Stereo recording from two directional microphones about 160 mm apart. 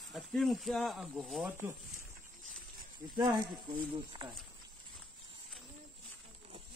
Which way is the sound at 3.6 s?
30° right (ahead or behind).